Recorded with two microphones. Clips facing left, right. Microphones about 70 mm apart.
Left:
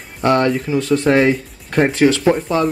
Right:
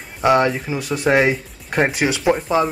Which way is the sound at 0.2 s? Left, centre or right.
Centre.